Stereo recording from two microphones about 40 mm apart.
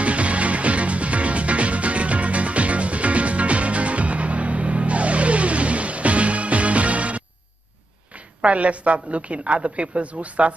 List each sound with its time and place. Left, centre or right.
0.0 s music: right
8.4 s a woman's voice: right